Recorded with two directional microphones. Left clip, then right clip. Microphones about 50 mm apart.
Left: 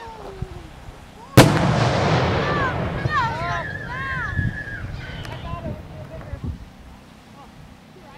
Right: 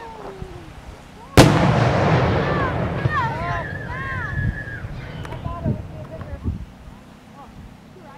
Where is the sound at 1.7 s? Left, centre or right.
Left.